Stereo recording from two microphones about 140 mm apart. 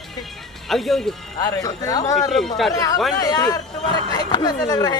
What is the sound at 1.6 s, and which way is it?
Speech, 25° left (ahead or behind).